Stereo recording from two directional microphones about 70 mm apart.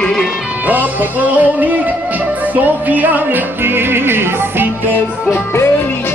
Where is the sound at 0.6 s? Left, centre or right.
Right.